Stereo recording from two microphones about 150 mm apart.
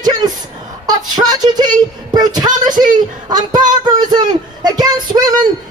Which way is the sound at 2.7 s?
60° right (ahead or behind).